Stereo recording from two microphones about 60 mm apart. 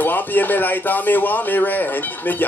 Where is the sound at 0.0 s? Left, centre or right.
Left.